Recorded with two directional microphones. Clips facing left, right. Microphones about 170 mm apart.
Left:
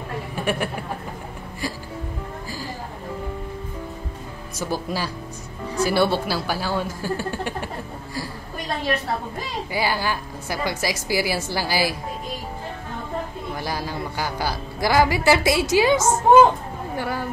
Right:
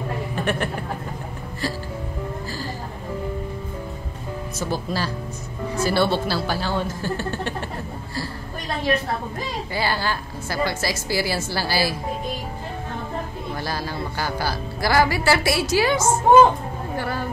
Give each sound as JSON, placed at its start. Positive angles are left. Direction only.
{"t": 0.4, "sound": "speech", "side_deg": 10}
{"t": 4.6, "sound": "a woman's voice", "side_deg": 10}
{"t": 9.7, "sound": "a woman's voice", "side_deg": 10}
{"t": 13.6, "sound": "a woman's voice", "side_deg": 15}